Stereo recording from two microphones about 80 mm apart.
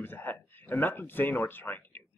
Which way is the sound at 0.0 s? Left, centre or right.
Left.